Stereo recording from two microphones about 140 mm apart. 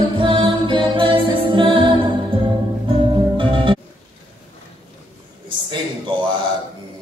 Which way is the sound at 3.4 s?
40° right (ahead or behind).